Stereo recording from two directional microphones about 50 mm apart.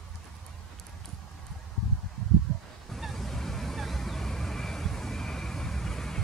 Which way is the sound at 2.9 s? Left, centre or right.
Centre.